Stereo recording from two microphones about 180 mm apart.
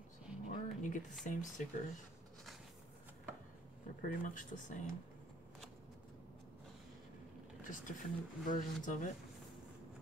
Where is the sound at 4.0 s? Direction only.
45° left (ahead or behind).